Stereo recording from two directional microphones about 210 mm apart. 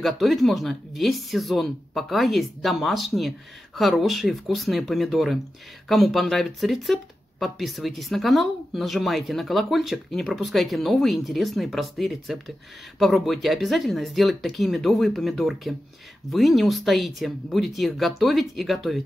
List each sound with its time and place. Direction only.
0.0 s speech: centre (ahead or behind)